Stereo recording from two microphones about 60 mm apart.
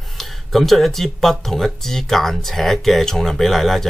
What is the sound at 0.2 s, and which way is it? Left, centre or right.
Speech, centre.